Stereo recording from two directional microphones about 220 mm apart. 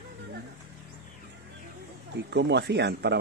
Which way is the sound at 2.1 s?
50° right (ahead or behind).